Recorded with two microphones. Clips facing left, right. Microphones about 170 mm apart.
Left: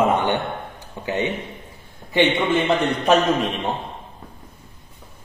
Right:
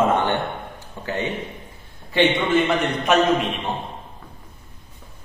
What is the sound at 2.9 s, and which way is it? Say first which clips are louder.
Speech: left 1 dB; 35° left (ahead or behind).